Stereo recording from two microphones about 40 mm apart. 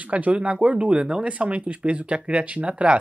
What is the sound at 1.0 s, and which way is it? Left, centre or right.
Speech, right.